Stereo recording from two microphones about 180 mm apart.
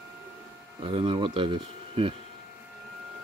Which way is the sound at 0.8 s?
30° right (ahead or behind).